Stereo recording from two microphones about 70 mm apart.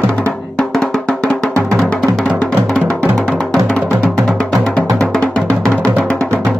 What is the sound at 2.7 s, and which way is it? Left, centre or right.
Music, centre.